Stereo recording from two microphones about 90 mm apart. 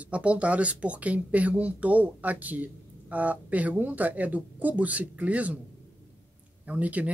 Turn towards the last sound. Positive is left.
turn(degrees=-15)  # may be behind; listen again after turning